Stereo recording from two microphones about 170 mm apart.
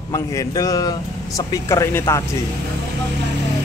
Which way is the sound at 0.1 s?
20° left (ahead or behind).